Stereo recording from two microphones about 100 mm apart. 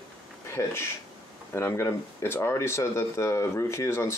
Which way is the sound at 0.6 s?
30° left (ahead or behind).